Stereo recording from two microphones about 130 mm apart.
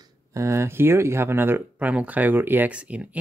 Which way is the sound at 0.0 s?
25° right (ahead or behind).